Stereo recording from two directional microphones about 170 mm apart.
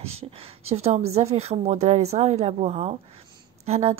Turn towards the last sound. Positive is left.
turn(degrees=-35)  # may be behind; listen again after turning